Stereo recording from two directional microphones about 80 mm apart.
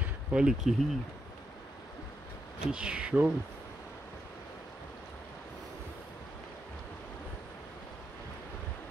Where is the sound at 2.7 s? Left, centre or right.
Centre.